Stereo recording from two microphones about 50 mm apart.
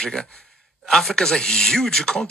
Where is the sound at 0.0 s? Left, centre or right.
Centre.